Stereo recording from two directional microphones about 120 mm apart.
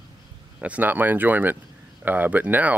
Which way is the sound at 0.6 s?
10° right (ahead or behind).